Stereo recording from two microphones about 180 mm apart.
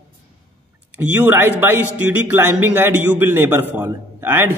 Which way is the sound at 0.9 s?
10° right (ahead or behind).